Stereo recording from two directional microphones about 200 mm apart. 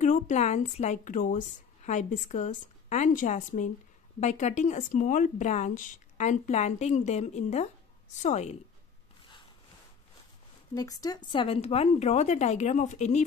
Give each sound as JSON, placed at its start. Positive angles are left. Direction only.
{"t": 0.0, "sound": "a woman's voice", "side_deg": 35}
{"t": 10.7, "sound": "speech", "side_deg": 15}